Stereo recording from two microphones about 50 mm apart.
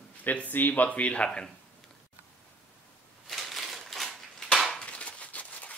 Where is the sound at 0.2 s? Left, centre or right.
Left.